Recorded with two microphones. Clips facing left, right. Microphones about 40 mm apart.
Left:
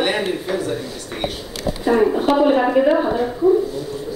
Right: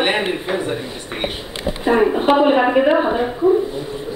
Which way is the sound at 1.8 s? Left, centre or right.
Right.